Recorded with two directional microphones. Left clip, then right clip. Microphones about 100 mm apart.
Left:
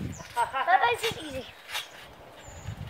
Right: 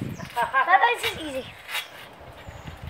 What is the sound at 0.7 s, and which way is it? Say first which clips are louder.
Speech: right 2 dB; 25° left (ahead or behind).